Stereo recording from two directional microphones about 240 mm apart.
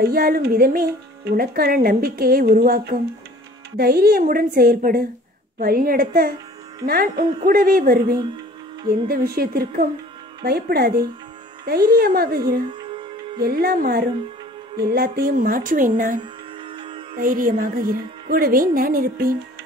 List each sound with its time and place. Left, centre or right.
0.0 s speech: right
16.7 s music: centre
17.2 s speech: right